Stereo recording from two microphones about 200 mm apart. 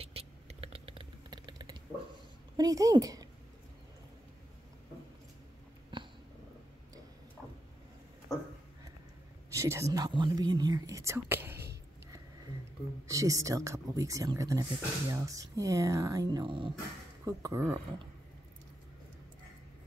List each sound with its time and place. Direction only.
0.0 s typing: 30° right (ahead or behind)
2.5 s a woman's voice: 15° right (ahead or behind)
9.5 s speech: 15° right (ahead or behind)
13.0 s speech: 15° right (ahead or behind)